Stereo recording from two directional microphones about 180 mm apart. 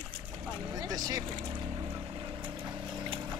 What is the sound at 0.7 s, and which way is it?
Speech, 20° right (ahead or behind).